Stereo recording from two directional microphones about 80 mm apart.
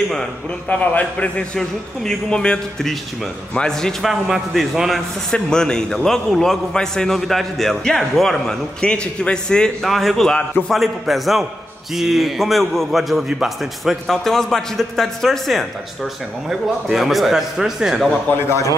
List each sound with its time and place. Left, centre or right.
0.7 s a man's voice: centre